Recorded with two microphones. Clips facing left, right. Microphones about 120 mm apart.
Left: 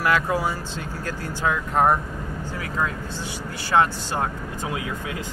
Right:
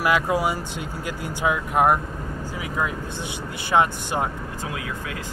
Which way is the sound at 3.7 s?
15° right (ahead or behind).